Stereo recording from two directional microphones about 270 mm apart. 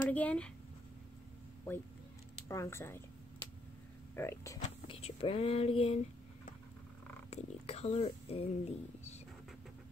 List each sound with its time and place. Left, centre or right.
0.1 s speech: centre
2.4 s speech: centre
4.1 s speech: centre
7.2 s speech: left